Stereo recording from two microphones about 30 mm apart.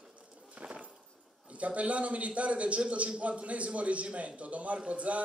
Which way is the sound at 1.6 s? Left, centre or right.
Right.